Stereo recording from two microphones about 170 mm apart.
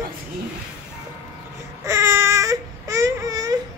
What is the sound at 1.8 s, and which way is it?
Baby cry, 15° right (ahead or behind).